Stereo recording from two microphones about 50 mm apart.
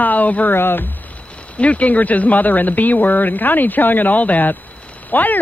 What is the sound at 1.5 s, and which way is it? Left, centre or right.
A woman's voice, left.